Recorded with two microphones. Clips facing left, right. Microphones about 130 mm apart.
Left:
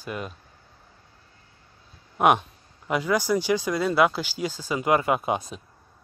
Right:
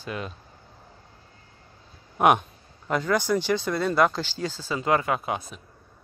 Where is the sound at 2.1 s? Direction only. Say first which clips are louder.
Even; centre (ahead or behind); by 5.6 s 20° left (ahead or behind).